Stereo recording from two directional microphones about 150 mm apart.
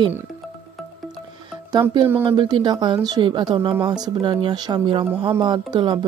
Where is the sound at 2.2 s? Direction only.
30° right (ahead or behind).